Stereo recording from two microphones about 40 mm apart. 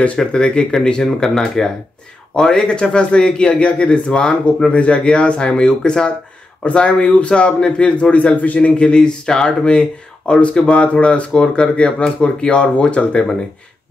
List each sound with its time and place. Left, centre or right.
0.3 s a man's voice: left
1.0 s a man's voice: centre
4.7 s a man's voice: left
6.6 s a man's voice: left
8.5 s a man's voice: left
9.7 s a man's voice: left